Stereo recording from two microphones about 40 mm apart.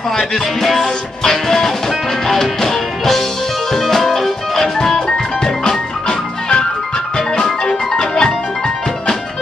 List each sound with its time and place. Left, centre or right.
0.3 s music: centre